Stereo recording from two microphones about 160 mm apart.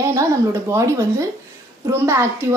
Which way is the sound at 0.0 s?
20° right (ahead or behind).